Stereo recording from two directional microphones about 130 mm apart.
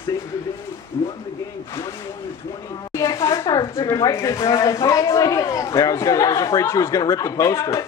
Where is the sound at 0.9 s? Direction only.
30° left (ahead or behind).